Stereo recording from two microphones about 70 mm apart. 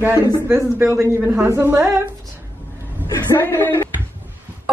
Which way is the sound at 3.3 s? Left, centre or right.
Left.